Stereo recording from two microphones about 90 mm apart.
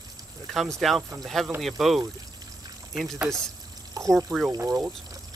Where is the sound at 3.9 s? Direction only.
35° right (ahead or behind).